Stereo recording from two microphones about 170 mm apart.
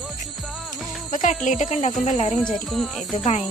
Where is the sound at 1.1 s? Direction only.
50° left (ahead or behind).